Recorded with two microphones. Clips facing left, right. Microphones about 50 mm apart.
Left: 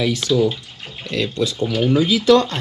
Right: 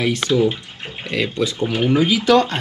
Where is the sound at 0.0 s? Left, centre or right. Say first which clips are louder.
Even; right.